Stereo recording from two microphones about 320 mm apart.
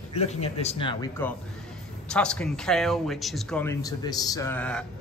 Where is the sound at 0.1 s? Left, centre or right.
Centre.